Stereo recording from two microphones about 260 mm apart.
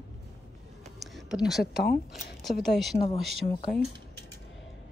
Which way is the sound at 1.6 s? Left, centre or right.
Left.